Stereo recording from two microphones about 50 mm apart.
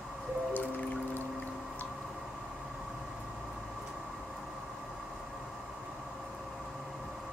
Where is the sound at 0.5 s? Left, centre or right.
Left.